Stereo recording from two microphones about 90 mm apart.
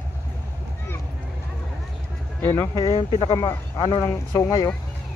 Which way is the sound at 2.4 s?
30° left (ahead or behind).